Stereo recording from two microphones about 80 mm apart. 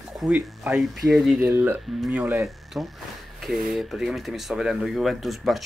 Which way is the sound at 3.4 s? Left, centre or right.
Centre.